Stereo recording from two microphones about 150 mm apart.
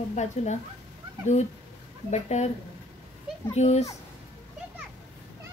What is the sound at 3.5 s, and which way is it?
Speech, 50° left (ahead or behind).